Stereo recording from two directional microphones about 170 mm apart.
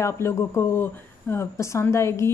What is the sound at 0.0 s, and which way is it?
Speech, 15° left (ahead or behind).